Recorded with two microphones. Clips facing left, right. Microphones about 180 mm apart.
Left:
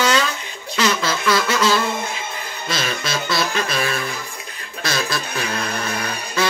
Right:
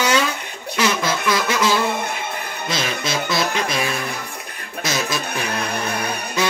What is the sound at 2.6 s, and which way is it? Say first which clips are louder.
Music: even; 20° right (ahead or behind).